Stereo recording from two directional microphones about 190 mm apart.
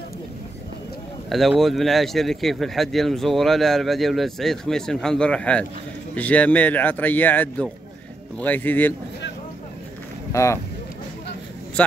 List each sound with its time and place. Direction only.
1.3 s a man's voice: centre (ahead or behind)
10.3 s a man's voice: 15° left (ahead or behind)